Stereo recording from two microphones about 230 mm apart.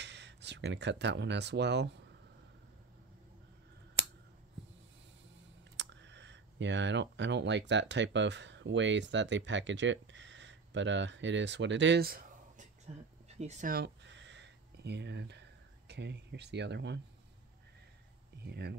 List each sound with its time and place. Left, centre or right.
0.0 s speech: right
5.8 s speech: right
18.4 s speech: right